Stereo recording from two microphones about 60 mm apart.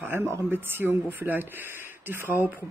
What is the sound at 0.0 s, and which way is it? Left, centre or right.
Speech, right.